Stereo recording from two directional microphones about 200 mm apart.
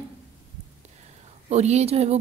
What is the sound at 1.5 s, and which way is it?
Speech, 35° right (ahead or behind).